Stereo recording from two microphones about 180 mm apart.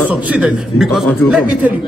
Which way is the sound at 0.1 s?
5° right (ahead or behind).